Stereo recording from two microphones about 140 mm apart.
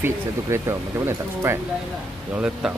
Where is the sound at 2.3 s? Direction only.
5° right (ahead or behind).